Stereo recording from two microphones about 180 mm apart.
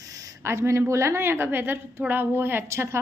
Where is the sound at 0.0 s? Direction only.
20° right (ahead or behind).